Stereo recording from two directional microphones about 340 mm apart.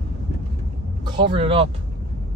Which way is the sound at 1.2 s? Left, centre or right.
Centre.